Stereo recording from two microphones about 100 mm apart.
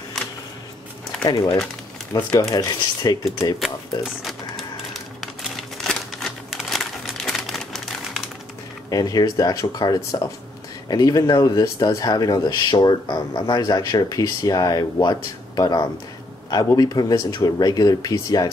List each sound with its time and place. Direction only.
1.3 s speech: 35° left (ahead or behind)
3.5 s speech: centre (ahead or behind)
5.2 s typewriter: centre (ahead or behind)
8.9 s speech: 40° left (ahead or behind)